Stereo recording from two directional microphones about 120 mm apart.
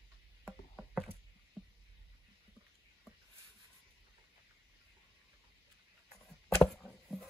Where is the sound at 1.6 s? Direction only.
5° left (ahead or behind).